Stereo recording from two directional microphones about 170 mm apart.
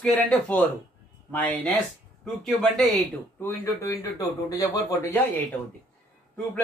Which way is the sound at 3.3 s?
15° left (ahead or behind).